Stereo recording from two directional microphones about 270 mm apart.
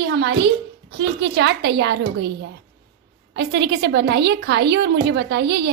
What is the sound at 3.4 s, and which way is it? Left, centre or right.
A woman's voice, right.